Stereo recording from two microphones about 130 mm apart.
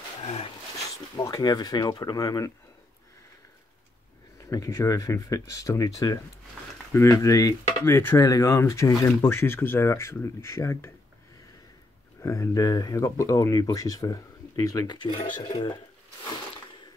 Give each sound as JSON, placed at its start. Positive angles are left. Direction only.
{"t": 0.2, "sound": "speech", "side_deg": 50}
{"t": 1.1, "sound": "speech", "side_deg": 30}
{"t": 4.5, "sound": "speech", "side_deg": 25}
{"t": 12.2, "sound": "speech", "side_deg": 25}